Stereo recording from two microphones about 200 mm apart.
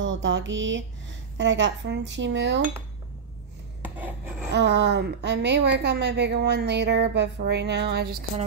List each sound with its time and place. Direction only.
0.0 s a sound: 70° right (ahead or behind)
1.4 s a woman's voice: 65° right (ahead or behind)
4.5 s a woman's voice: 60° right (ahead or behind)